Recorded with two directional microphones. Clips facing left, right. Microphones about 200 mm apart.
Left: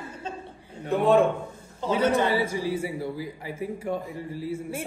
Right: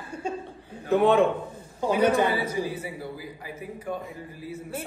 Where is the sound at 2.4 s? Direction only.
25° left (ahead or behind).